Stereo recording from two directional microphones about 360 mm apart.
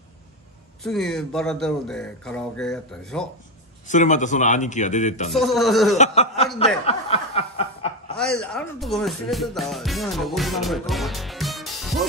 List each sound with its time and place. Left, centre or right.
0.8 s speech: centre
3.8 s a man's voice: centre
5.3 s speech: centre
5.9 s speech: centre
6.9 s snicker: centre
8.2 s speech: centre